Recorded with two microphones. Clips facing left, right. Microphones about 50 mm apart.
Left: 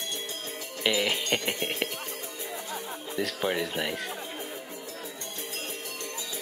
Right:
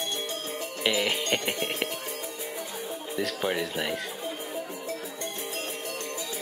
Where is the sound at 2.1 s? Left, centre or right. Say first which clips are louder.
Right 2 dB; right.